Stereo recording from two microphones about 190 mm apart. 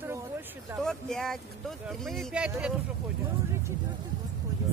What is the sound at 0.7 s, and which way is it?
Speech, centre (ahead or behind).